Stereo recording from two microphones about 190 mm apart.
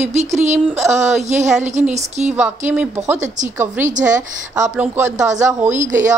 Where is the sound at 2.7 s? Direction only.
5° right (ahead or behind).